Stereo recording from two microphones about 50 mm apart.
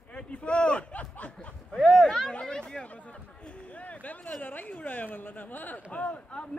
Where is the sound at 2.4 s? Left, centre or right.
Centre.